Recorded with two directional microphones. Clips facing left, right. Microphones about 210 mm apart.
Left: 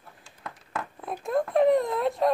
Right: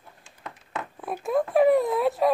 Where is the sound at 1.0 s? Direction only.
5° right (ahead or behind).